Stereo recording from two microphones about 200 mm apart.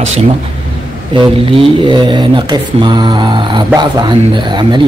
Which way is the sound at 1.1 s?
25° right (ahead or behind).